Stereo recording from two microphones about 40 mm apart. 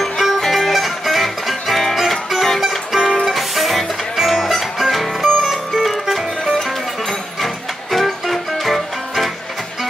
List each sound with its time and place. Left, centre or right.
0.0 s music: centre
2.7 s music: centre
6.0 s music: centre